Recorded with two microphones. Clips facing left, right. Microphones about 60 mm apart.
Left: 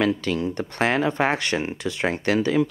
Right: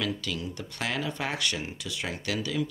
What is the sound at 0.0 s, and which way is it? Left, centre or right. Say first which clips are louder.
Speech: left 10 dB; left.